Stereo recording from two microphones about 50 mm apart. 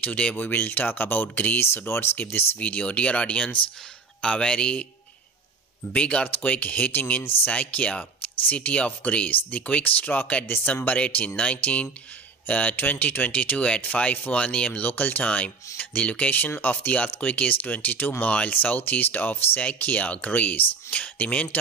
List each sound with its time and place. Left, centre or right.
0.0 s speech: left
1.3 s speech: left
1.9 s speech: left
2.6 s speech: left
5.9 s speech: left
10.5 s speech: left
18.5 s speech: left